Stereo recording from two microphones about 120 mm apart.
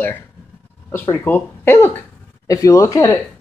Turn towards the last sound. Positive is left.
turn(degrees=25)  # may be behind; listen again after turning